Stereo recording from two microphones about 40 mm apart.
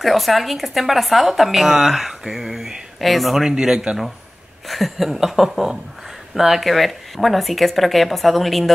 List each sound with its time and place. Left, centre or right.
0.0 s speech: centre
3.0 s speech: centre
3.4 s speech: centre
4.6 s speech: centre